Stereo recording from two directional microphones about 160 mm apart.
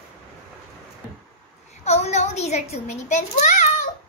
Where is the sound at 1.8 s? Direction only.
45° left (ahead or behind).